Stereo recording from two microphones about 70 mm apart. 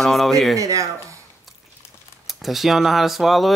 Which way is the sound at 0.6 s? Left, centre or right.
Right.